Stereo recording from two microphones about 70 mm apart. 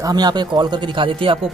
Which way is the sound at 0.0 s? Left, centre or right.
Right.